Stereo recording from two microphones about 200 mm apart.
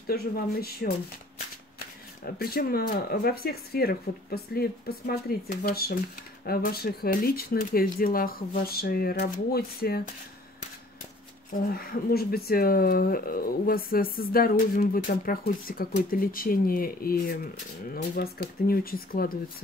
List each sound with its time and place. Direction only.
0.0 s speech: 50° left (ahead or behind)
2.3 s speech: 50° left (ahead or behind)
11.5 s speech: 45° left (ahead or behind)